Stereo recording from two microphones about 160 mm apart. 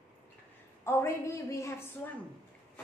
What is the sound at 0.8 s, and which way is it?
A woman's voice, 15° left (ahead or behind).